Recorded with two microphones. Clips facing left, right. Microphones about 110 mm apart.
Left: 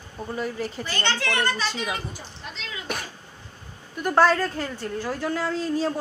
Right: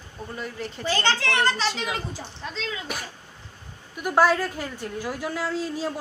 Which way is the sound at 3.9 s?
10° right (ahead or behind).